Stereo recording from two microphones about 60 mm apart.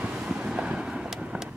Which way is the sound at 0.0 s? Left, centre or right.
Centre.